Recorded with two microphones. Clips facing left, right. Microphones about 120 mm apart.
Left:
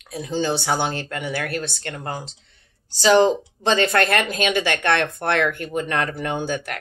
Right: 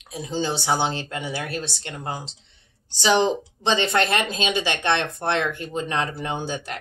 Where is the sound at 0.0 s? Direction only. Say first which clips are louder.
Left 3 dB; 20° right (ahead or behind).